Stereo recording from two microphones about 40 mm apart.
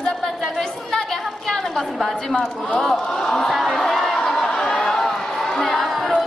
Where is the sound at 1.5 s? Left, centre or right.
Centre.